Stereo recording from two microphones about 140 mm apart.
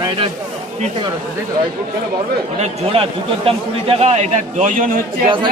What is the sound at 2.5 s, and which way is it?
A man's voice, 45° right (ahead or behind).